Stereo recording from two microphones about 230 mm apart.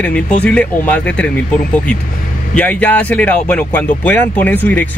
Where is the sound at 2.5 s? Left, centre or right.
Centre.